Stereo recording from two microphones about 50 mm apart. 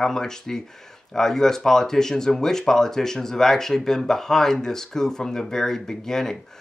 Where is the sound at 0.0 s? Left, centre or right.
Centre.